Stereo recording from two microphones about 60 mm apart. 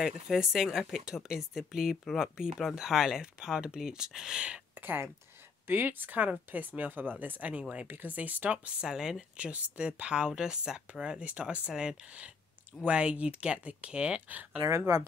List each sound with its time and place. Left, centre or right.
0.0 s speech: centre
4.7 s speech: right
8.8 s speech: centre
14.9 s speech: right